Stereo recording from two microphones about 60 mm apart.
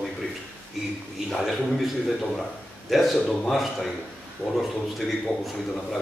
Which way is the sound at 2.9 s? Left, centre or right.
Centre.